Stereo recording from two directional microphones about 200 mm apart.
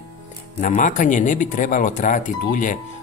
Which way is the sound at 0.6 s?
40° left (ahead or behind).